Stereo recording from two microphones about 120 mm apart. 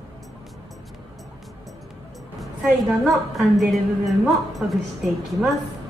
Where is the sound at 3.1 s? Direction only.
Centre (ahead or behind).